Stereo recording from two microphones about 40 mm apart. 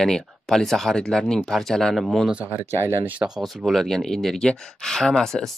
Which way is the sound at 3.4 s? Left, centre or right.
Centre.